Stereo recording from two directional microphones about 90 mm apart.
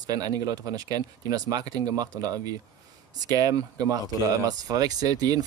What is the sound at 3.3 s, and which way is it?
Speech, 40° right (ahead or behind).